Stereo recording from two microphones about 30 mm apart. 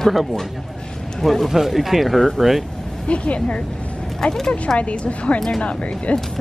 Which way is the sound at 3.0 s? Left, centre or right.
Left.